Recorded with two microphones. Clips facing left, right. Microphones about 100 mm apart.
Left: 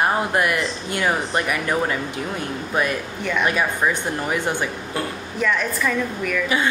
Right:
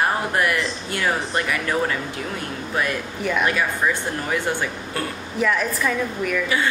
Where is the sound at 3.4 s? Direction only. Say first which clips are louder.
Left 3 dB; 20° left (ahead or behind).